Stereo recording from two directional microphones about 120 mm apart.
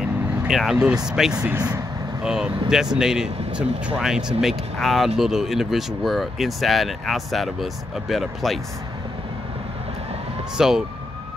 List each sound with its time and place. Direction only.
0.5 s speech: 5° right (ahead or behind)
10.6 s speech: 5° right (ahead or behind)